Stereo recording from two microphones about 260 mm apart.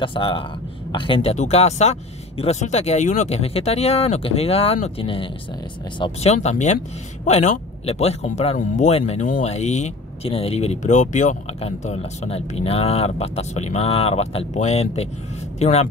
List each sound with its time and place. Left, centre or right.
0.0 s speech: centre